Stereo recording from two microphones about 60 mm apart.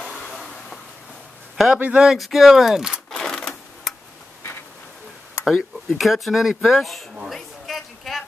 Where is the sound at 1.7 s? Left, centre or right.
Right.